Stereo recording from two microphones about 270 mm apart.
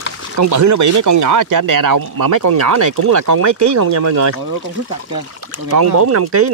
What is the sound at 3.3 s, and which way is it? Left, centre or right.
Speech, right.